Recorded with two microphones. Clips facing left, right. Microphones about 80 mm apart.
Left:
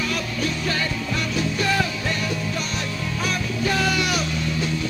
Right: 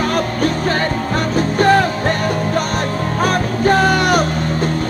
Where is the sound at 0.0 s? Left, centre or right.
Right.